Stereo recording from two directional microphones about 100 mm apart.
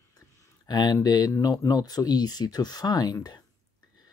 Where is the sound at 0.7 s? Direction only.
45° left (ahead or behind).